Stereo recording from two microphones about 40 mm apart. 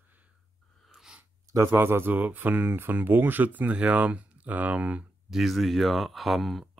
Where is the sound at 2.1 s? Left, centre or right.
Right.